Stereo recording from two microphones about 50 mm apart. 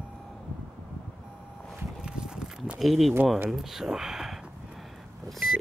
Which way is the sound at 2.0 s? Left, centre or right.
Centre.